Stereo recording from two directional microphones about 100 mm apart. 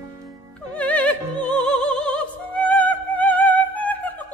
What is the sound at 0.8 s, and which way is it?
Music, 15° left (ahead or behind).